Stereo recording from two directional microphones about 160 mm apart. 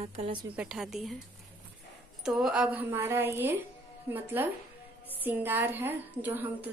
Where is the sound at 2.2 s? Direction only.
5° right (ahead or behind).